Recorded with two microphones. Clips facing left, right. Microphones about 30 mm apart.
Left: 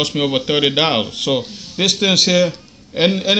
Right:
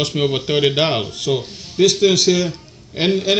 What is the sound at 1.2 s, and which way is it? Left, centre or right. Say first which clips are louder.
Speech: left 2 dB; left.